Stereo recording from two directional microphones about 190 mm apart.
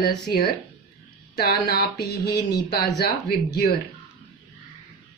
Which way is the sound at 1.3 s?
55° left (ahead or behind).